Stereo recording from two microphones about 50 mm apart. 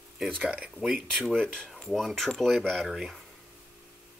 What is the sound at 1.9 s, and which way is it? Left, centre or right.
Speech, centre.